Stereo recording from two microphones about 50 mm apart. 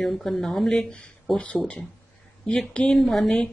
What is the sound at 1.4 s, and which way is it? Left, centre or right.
Speech, left.